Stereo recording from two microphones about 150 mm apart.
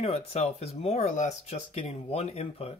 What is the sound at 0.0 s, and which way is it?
Speech, 45° left (ahead or behind).